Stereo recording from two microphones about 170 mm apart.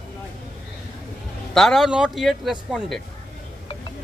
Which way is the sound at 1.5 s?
Centre (ahead or behind).